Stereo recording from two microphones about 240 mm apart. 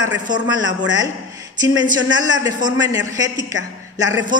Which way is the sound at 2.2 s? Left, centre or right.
Centre.